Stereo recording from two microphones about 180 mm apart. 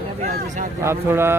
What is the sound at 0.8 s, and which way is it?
Speech, 15° right (ahead or behind).